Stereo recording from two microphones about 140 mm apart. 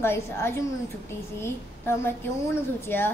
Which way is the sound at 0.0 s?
15° left (ahead or behind).